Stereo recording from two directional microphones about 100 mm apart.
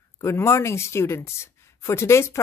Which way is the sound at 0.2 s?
30° left (ahead or behind).